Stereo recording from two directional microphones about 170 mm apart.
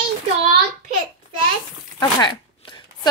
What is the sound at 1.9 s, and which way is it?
Chopping, 25° left (ahead or behind).